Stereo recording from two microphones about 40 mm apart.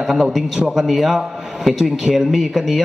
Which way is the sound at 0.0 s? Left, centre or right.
Centre.